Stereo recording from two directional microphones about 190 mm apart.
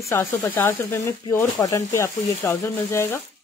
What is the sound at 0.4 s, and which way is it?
A woman's voice, 10° left (ahead or behind).